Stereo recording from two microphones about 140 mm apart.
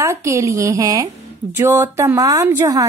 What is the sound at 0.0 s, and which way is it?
A woman's voice, 20° right (ahead or behind).